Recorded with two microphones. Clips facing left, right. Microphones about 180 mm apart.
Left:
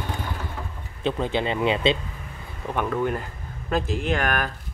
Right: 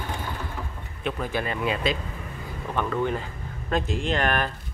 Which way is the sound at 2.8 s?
5° left (ahead or behind).